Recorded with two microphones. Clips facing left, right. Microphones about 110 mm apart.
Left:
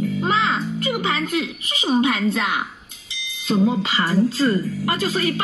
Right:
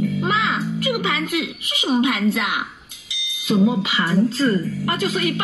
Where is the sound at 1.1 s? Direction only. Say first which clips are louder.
Even; 10° right (ahead or behind).